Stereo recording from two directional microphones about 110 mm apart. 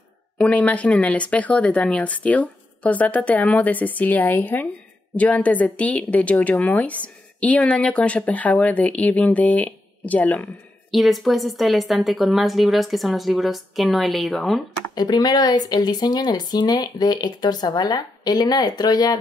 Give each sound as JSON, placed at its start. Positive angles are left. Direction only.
{"t": 0.4, "sound": "a woman's voice", "side_deg": 10}
{"t": 10.9, "sound": "speech", "side_deg": 0}
{"t": 15.0, "sound": "speech", "side_deg": 40}